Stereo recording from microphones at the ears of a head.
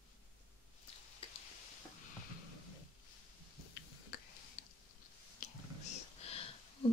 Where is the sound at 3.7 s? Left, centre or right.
Left.